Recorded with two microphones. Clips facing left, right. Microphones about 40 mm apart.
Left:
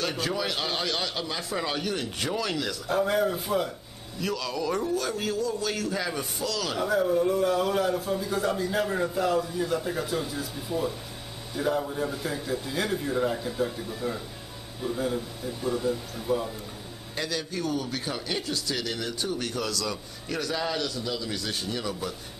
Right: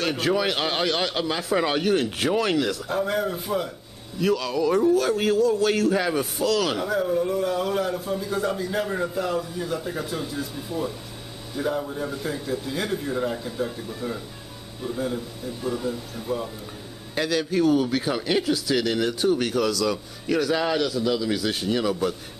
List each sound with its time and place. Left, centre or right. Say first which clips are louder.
0.3 s a man's voice: right 6 dB; right
2.9 s a man's voice: even; centre
5.9 s a man's voice: right 7 dB; right
6.8 s a man's voice: even; centre